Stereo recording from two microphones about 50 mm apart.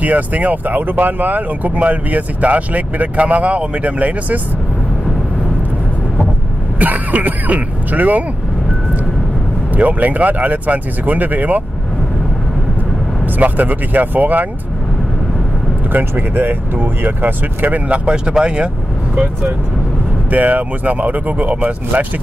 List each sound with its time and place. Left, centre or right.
0.0 s speech: right
6.8 s speech: right
9.8 s speech: right
13.4 s speech: right
15.9 s speech: right; by 18.7 s centre
20.2 s speech: right